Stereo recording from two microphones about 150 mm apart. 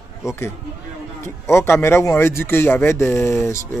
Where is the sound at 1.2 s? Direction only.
20° left (ahead or behind).